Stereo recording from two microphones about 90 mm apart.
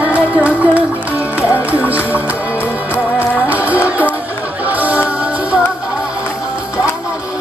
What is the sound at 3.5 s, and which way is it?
Music, 20° right (ahead or behind).